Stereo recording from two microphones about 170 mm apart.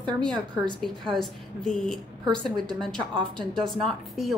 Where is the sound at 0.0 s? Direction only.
5° left (ahead or behind).